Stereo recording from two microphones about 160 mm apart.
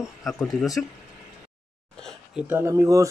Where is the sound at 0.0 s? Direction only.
Centre (ahead or behind).